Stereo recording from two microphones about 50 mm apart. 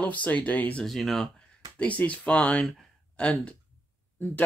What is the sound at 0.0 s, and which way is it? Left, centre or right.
Speech, left.